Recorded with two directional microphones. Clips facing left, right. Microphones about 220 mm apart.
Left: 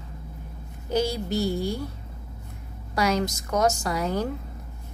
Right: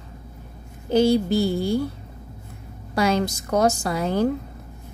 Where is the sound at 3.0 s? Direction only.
30° right (ahead or behind).